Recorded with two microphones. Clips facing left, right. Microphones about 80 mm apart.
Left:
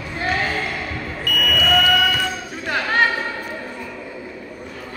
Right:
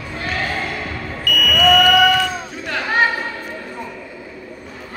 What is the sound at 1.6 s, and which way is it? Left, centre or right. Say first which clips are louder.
Fire alarm: right 6 dB; right.